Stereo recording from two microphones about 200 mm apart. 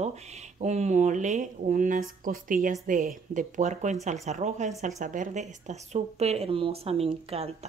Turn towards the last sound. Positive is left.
turn(degrees=-30)  # may be behind; listen again after turning